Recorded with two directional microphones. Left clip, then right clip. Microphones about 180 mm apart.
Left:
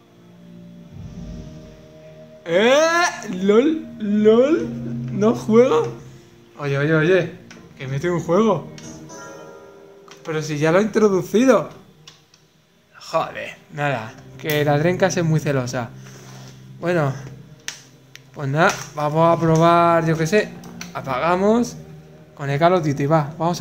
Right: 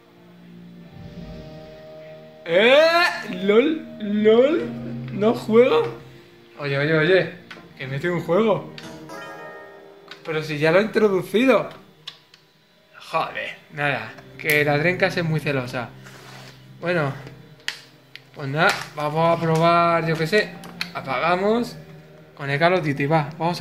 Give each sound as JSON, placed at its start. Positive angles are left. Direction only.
{"t": 2.4, "sound": "speech", "side_deg": 5}
{"t": 10.2, "sound": "speech", "side_deg": 10}
{"t": 13.0, "sound": "speech", "side_deg": 10}
{"t": 18.3, "sound": "speech", "side_deg": 15}